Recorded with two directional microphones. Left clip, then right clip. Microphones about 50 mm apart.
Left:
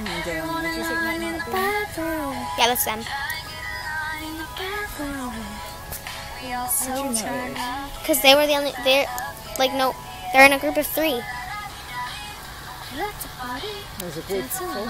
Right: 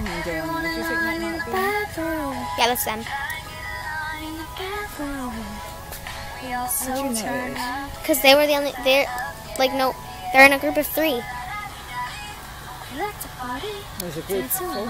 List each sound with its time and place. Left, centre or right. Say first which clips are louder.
0.0 s music: even; centre
1.5 s music: even; centre
6.4 s a woman's voice: right 1 dB; centre
9.6 s music: even; centre
12.9 s speech: right 1 dB; centre
14.1 s speech: right 1 dB; right